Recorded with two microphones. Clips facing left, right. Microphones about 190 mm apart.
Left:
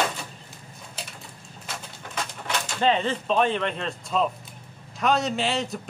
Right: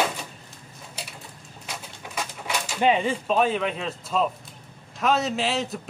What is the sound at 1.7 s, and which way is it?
Pigeon, 10° right (ahead or behind).